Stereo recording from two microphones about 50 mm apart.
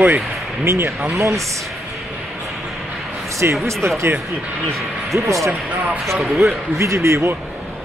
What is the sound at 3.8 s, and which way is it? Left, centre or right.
Speech, right.